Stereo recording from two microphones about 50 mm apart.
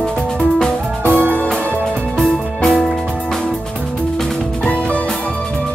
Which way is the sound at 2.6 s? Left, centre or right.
Centre.